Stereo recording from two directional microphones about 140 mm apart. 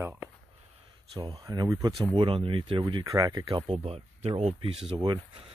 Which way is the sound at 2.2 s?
40° right (ahead or behind).